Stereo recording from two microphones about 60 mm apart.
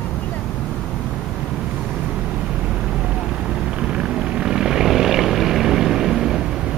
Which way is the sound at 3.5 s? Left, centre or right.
Centre.